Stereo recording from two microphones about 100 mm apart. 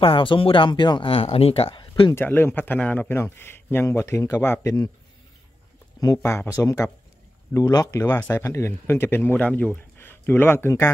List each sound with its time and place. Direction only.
0.0 s speech: 60° left (ahead or behind)
2.1 s a man's voice: 20° left (ahead or behind)
5.9 s speech: 30° left (ahead or behind)
8.2 s a man's voice: 20° left (ahead or behind)